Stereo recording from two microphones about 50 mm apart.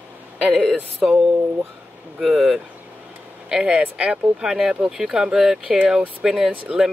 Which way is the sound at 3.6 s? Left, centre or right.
Right.